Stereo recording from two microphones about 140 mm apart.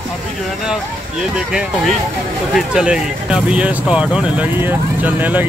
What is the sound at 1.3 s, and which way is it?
Speech, 5° right (ahead or behind).